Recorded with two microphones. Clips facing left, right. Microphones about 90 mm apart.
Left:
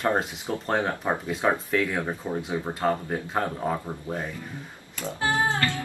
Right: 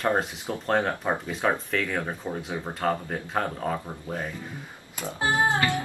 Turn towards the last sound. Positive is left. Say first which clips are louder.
# right 2 dB
turn(degrees=-15)  # may be behind; listen again after turning